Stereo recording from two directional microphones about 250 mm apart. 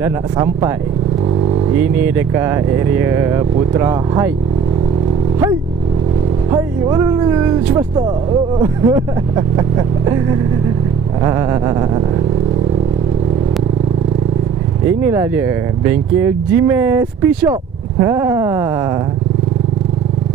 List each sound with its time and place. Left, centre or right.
0.0 s speech: centre
1.8 s speech: centre
6.5 s speech: centre
15.0 s speech: centre